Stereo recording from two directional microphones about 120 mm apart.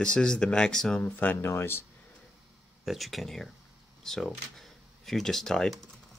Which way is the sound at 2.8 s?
Centre (ahead or behind).